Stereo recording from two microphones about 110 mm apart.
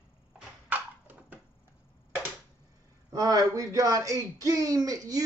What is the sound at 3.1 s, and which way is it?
Speech, 30° right (ahead or behind).